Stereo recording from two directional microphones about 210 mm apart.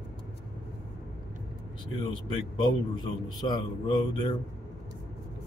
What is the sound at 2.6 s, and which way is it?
A man's voice, 20° left (ahead or behind).